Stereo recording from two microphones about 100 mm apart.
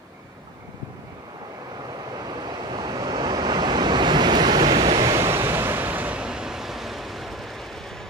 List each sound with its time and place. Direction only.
2.1 s waves: 45° right (ahead or behind)
5.1 s waves: 25° right (ahead or behind); by 7.6 s centre (ahead or behind)